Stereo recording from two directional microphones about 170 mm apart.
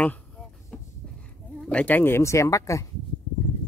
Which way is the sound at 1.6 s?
5° left (ahead or behind).